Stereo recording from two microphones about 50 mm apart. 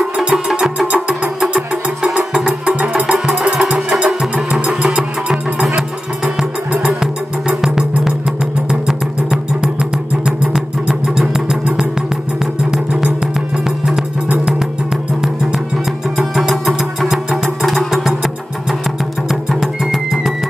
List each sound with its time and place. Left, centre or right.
0.0 s music: centre
13.7 s music: centre
16.2 s music: centre